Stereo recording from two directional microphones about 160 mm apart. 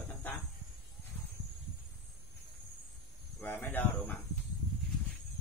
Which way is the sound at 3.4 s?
15° left (ahead or behind).